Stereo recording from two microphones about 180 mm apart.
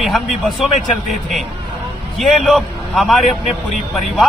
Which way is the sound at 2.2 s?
Centre (ahead or behind).